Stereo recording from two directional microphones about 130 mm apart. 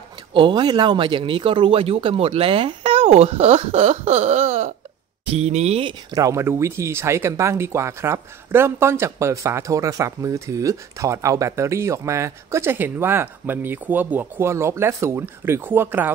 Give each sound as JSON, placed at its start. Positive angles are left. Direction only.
{"t": 0.3, "sound": "speech", "side_deg": -40}
{"t": 6.1, "sound": "speech", "side_deg": -25}